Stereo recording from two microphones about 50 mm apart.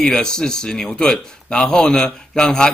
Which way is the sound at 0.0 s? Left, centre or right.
Centre.